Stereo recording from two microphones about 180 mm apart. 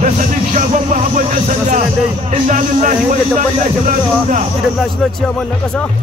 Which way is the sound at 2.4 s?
45° right (ahead or behind).